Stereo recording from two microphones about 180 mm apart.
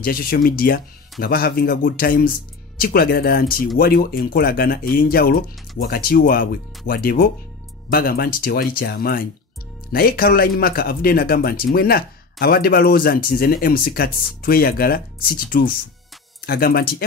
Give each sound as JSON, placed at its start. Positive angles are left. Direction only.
{"t": 0.0, "sound": "speech", "side_deg": 55}